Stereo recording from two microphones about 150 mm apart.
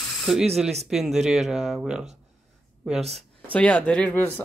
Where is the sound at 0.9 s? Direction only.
Centre (ahead or behind).